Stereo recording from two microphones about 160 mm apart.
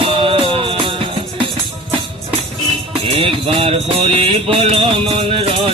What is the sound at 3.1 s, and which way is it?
Music, 35° right (ahead or behind).